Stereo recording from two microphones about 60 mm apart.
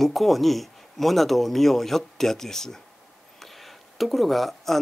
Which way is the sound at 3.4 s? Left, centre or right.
Centre.